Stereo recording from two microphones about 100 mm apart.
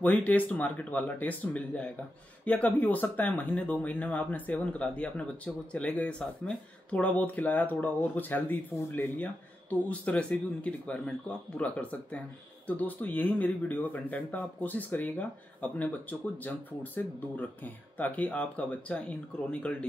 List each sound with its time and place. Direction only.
0.0 s speech: 15° left (ahead or behind)